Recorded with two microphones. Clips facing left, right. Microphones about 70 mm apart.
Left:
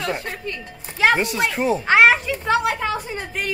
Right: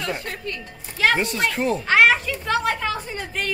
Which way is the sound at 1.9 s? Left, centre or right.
Centre.